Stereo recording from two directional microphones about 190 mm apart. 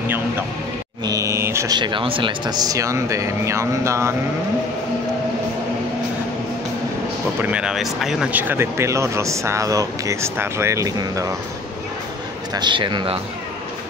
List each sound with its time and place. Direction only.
1.0 s speech: 15° right (ahead or behind)
7.4 s speech: 5° right (ahead or behind)
12.5 s a man's voice: 25° right (ahead or behind)